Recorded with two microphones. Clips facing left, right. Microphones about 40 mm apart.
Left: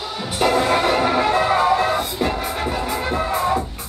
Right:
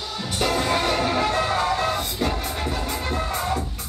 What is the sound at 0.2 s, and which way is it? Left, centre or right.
Music, centre.